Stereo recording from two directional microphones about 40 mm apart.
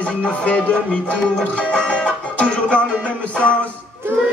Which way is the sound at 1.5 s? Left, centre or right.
Left.